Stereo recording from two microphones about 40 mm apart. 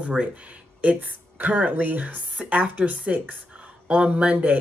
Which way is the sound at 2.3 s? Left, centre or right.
Right.